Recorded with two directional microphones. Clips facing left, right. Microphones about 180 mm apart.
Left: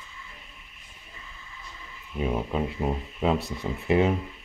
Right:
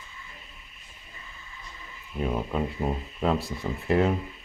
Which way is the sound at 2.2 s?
5° left (ahead or behind).